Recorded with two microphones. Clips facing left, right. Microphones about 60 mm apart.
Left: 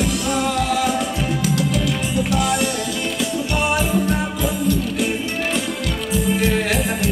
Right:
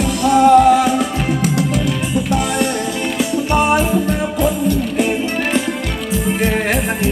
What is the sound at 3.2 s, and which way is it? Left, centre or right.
Music, right.